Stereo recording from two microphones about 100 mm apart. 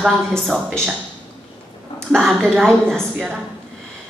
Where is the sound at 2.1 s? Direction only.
Centre (ahead or behind).